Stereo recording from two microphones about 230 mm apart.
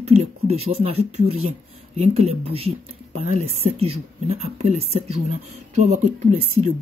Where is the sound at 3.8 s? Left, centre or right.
Right.